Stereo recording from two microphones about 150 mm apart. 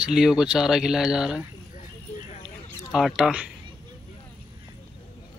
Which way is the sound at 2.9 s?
5° right (ahead or behind).